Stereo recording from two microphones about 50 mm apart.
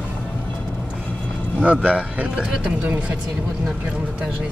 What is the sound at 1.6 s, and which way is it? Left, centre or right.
Speech, right.